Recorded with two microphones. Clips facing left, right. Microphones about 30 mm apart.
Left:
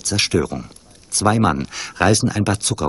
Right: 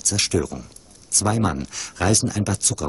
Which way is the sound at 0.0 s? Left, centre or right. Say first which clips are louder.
Left 3 dB; left.